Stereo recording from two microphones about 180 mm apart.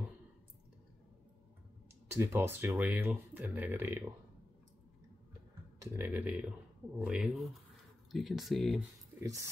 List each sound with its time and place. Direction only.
2.0 s speech: 15° right (ahead or behind)
5.8 s speech: 10° right (ahead or behind)
9.2 s speech: 15° right (ahead or behind)